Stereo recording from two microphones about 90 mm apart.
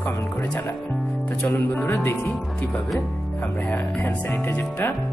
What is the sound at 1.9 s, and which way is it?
Speech, 25° left (ahead or behind).